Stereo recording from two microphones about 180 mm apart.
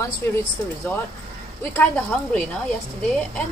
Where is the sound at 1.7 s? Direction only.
10° left (ahead or behind).